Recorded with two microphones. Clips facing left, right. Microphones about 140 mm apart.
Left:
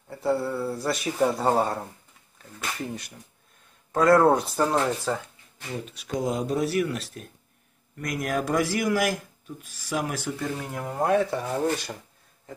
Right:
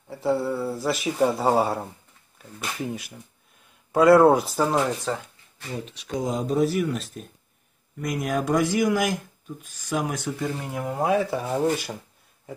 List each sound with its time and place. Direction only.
0.1 s speech: centre (ahead or behind)